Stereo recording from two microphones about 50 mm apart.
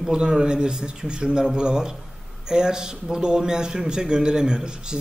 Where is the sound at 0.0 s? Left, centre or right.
Centre.